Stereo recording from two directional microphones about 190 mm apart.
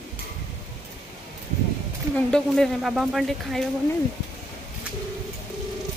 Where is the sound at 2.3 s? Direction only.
5° left (ahead or behind).